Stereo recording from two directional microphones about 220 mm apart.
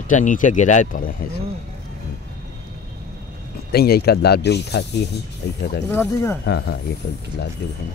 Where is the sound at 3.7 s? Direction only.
45° left (ahead or behind).